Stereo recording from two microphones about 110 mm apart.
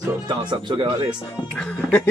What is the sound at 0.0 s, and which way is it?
Speech, 40° right (ahead or behind).